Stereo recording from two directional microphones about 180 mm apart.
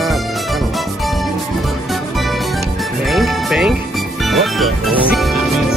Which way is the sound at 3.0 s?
Centre (ahead or behind).